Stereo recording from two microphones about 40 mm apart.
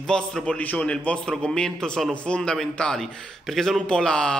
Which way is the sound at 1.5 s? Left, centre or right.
Centre.